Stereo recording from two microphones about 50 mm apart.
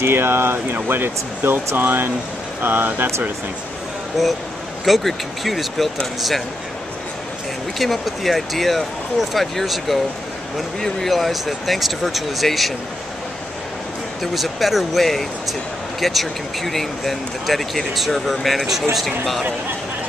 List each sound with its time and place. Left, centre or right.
0.0 s speech: right
4.2 s speech: centre
7.8 s speech: centre
14.2 s speech: centre